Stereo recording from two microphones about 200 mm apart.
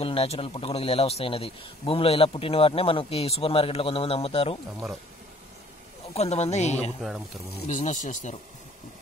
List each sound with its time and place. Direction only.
0.0 s a man's voice: 30° left (ahead or behind)
6.1 s speech: 30° left (ahead or behind)